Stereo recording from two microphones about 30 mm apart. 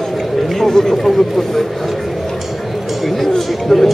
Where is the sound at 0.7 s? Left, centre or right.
Centre.